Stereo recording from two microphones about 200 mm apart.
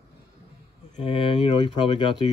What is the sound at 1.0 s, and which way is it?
Speech, 25° left (ahead or behind).